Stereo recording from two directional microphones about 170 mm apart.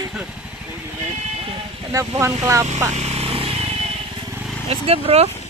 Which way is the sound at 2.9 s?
40° right (ahead or behind).